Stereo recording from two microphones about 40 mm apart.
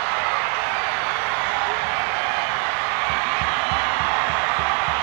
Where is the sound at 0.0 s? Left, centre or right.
Centre.